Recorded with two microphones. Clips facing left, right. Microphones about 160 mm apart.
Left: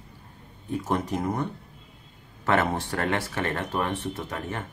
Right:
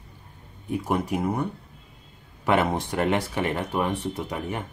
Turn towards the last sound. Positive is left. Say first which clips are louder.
# right 2 dB
turn(degrees=-15)  # may be behind; listen again after turning